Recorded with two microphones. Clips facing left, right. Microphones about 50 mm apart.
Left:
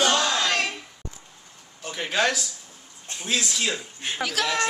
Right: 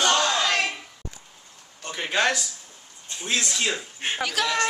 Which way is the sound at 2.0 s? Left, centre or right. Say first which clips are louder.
Even; centre.